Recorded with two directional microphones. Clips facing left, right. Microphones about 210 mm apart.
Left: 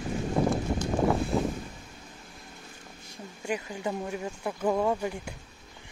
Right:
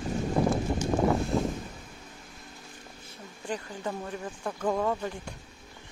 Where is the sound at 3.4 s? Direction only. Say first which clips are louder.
Left 2 dB; 10° left (ahead or behind).